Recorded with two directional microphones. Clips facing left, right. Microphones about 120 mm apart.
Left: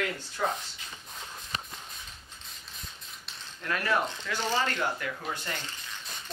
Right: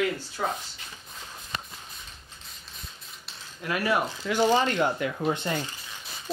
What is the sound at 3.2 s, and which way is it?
Cutlery, 10° right (ahead or behind).